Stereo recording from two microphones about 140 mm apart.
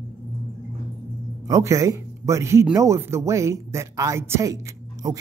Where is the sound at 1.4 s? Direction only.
20° right (ahead or behind).